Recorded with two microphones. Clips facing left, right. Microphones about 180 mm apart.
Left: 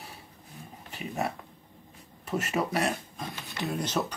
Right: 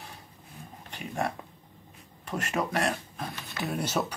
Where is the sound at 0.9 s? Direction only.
5° left (ahead or behind).